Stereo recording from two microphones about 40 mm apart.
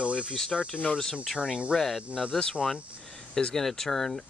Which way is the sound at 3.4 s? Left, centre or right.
Centre.